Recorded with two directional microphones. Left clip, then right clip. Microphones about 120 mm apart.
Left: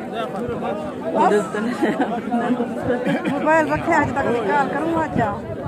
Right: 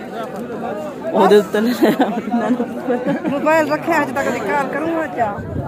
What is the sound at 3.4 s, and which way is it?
Speech, 35° right (ahead or behind).